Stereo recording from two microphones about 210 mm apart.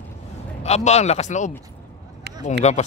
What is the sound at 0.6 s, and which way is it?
Speech, 30° left (ahead or behind).